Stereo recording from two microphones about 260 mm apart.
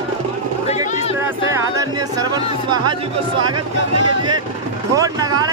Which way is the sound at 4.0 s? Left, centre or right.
Right.